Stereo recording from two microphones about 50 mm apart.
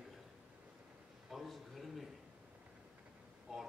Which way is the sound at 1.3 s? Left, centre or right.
Centre.